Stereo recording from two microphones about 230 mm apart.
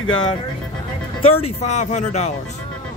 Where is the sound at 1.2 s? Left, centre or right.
Left.